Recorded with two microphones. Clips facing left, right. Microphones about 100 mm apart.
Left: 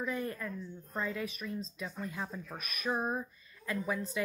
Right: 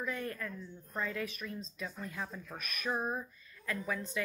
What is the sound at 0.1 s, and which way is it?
Speech, 30° left (ahead or behind).